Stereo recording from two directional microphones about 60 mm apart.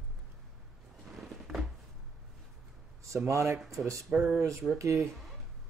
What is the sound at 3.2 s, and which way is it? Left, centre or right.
Speech, right.